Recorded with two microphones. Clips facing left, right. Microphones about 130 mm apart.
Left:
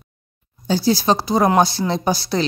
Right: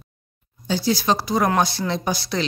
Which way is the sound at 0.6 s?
35° left (ahead or behind).